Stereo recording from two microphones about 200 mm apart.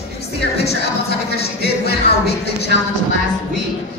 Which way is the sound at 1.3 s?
55° left (ahead or behind).